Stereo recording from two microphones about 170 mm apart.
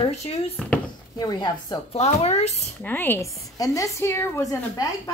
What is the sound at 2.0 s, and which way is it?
Speech, 40° left (ahead or behind).